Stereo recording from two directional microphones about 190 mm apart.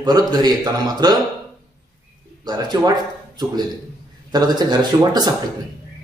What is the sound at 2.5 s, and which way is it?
Speech, 20° right (ahead or behind).